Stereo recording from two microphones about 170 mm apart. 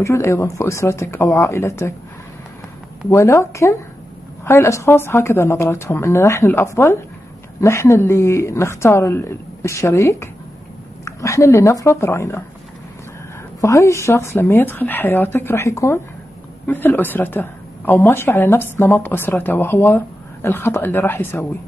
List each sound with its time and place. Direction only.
0.0 s speech: 15° left (ahead or behind)
3.1 s speech: 15° left (ahead or behind)
13.6 s speech: 20° left (ahead or behind)